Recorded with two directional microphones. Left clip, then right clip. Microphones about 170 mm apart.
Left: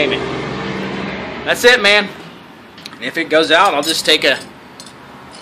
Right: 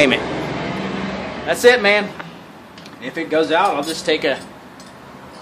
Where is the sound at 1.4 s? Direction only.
5° right (ahead or behind).